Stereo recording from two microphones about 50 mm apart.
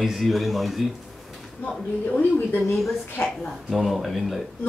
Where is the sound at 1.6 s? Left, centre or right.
Left.